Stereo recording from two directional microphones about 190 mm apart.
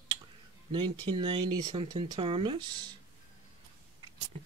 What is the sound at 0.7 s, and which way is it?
Speech, 25° right (ahead or behind).